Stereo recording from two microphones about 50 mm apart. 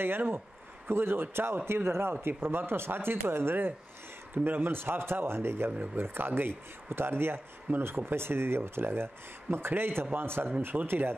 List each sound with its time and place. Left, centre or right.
0.0 s speech: right